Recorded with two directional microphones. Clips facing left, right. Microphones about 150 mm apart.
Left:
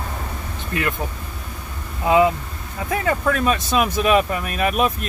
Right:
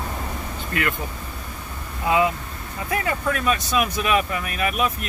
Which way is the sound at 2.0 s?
25° left (ahead or behind).